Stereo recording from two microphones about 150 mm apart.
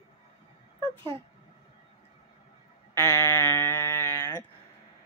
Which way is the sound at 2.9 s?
15° left (ahead or behind).